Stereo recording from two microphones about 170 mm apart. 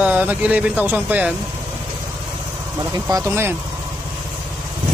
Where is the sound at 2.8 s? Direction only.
20° right (ahead or behind).